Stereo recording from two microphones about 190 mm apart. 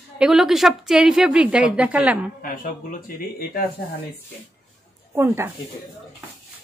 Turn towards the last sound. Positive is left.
turn(degrees=-10)  # may be behind; listen again after turning